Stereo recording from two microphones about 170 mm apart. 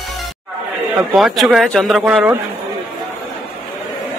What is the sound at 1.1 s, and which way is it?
Speech, centre (ahead or behind).